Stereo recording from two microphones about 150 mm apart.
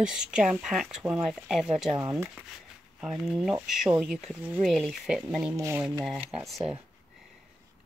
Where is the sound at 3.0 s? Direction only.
Centre (ahead or behind).